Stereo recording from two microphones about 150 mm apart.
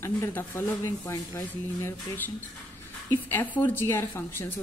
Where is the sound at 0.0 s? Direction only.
15° left (ahead or behind).